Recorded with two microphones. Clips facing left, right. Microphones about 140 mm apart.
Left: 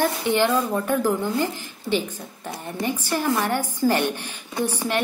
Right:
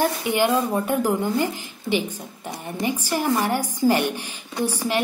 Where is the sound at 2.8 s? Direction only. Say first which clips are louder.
Right 1 dB; 15° right (ahead or behind).